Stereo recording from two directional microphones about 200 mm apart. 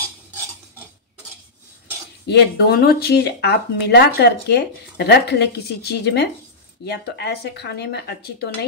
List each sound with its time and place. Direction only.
2.2 s speech: 55° left (ahead or behind)